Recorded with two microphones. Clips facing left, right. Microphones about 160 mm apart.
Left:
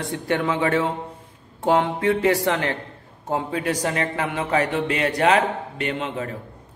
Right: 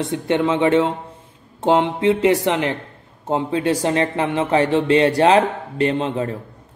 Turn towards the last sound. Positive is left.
turn(degrees=-30)  # may be behind; listen again after turning